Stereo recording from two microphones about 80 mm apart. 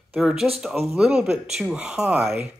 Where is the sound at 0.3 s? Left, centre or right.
Centre.